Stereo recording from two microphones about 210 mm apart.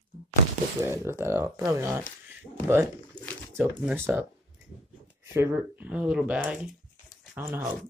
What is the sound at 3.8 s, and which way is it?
Speech, 10° right (ahead or behind).